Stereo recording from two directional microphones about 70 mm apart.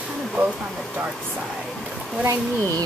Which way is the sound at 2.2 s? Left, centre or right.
Right.